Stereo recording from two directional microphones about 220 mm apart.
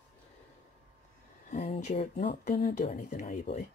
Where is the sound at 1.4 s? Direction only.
35° left (ahead or behind).